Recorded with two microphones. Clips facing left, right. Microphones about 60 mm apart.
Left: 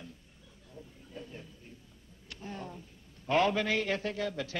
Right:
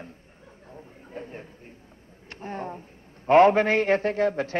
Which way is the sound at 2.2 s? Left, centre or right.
Right.